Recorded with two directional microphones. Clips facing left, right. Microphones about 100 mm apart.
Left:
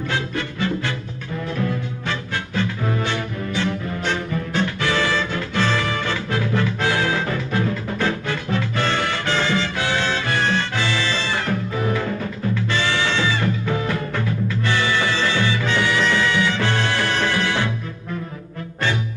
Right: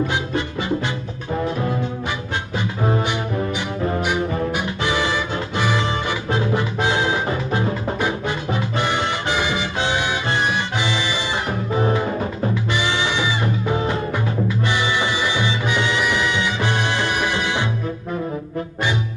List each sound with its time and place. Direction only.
0.0 s music: 20° right (ahead or behind)
4.6 s music: 15° right (ahead or behind)